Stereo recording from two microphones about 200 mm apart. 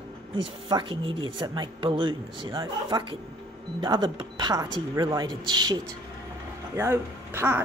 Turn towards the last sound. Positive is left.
turn(degrees=-10)  # may be behind; listen again after turning